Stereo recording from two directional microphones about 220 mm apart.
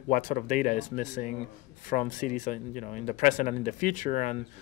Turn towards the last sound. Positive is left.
turn(degrees=35)  # may be behind; listen again after turning